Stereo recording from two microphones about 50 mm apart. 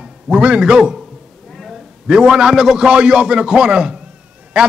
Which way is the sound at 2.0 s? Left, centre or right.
Centre.